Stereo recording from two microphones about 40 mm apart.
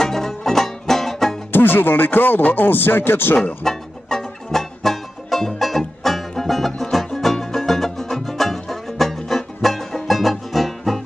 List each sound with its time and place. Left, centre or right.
0.0 s music: centre
1.5 s speech: left
3.6 s music: centre